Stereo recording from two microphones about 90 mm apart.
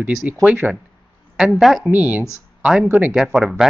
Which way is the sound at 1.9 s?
20° right (ahead or behind).